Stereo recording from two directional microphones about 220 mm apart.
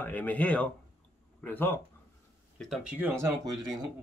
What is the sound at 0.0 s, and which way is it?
Speech, 5° left (ahead or behind).